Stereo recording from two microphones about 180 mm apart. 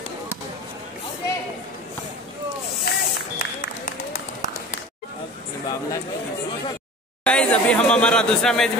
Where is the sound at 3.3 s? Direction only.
45° left (ahead or behind).